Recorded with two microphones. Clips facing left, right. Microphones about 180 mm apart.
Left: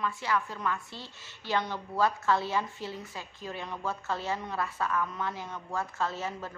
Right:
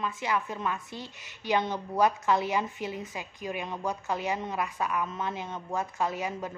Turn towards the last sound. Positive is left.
turn(degrees=-15)  # may be behind; listen again after turning